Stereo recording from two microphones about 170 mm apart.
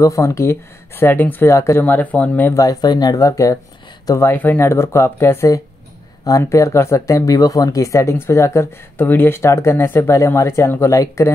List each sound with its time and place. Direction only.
0.0 s speech: 20° left (ahead or behind)
2.6 s speech: 25° left (ahead or behind)